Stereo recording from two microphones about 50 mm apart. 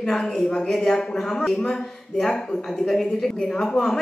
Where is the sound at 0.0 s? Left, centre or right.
Centre.